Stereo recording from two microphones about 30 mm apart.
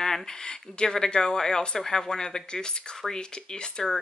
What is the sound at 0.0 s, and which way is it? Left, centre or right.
Speech, centre.